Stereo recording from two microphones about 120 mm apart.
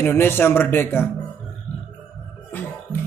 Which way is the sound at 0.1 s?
20° left (ahead or behind).